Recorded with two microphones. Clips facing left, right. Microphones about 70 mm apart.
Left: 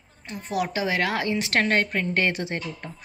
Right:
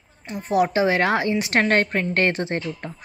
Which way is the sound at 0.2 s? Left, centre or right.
Right.